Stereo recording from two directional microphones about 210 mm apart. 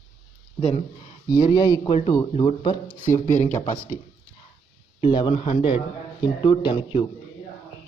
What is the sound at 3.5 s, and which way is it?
Speech, 35° left (ahead or behind).